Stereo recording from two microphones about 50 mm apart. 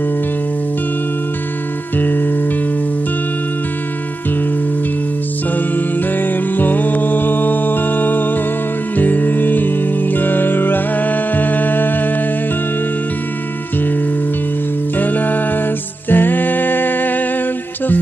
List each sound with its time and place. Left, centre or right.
2.0 s music: left
5.8 s music: left
15.0 s music: left